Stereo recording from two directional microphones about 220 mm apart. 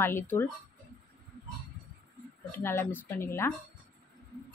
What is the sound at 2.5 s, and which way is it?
Speech, 10° left (ahead or behind).